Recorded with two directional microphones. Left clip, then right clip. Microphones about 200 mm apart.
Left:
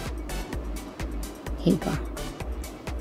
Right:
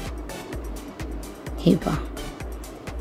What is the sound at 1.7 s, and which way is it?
Speech, 10° right (ahead or behind).